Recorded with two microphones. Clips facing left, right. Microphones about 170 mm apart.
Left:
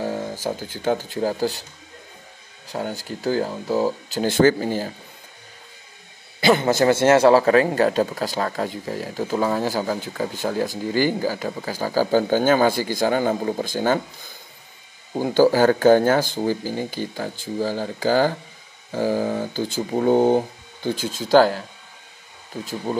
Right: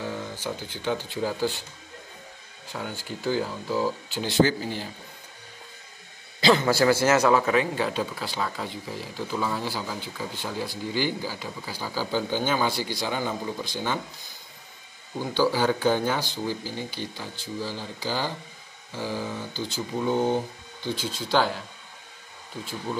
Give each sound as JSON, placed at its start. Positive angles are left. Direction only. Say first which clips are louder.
{"t": 0.0, "sound": "speech", "louder": "left 6 dB", "side_deg": 40}
{"t": 2.7, "sound": "speech", "louder": "left 6 dB", "side_deg": 40}
{"t": 6.5, "sound": "a man's voice", "louder": "left 3 dB", "side_deg": 20}
{"t": 7.4, "sound": "speech", "louder": "left 7 dB", "side_deg": 50}
{"t": 15.1, "sound": "speech", "louder": "left 8 dB", "side_deg": 45}